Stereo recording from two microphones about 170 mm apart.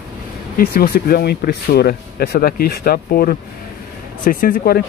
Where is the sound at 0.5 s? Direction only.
60° left (ahead or behind).